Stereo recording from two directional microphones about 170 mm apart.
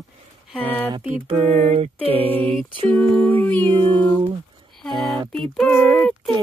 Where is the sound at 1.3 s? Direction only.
40° right (ahead or behind).